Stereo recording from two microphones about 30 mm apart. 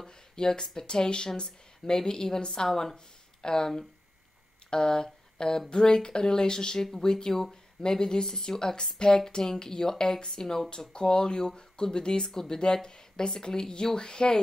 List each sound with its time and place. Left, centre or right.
0.0 s speech: left
4.6 s a sound: left
5.7 s speech: left
10.9 s speech: left